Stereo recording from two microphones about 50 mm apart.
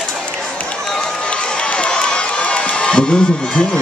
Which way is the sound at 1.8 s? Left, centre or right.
Left.